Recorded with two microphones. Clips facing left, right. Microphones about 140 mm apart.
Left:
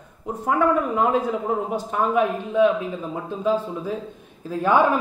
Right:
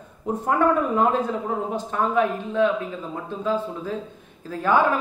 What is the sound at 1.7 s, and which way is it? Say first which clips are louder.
A man's voice: even; 15° left (ahead or behind).